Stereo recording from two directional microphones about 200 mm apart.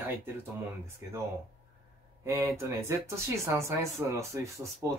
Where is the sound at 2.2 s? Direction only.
15° right (ahead or behind).